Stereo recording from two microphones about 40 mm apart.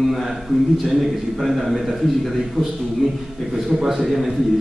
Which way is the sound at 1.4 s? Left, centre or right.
Centre.